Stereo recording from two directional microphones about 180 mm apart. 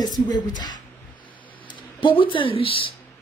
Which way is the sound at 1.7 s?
25° left (ahead or behind).